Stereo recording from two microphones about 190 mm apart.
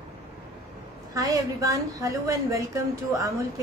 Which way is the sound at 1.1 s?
15° right (ahead or behind).